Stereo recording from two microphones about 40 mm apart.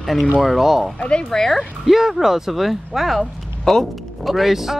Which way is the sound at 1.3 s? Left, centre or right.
Centre.